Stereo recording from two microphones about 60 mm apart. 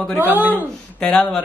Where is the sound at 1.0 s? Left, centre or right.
Centre.